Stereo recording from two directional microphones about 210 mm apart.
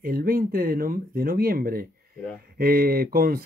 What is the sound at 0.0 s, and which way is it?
Speech, 45° right (ahead or behind).